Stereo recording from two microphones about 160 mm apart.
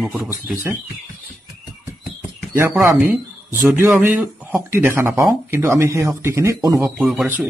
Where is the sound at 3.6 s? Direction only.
10° right (ahead or behind).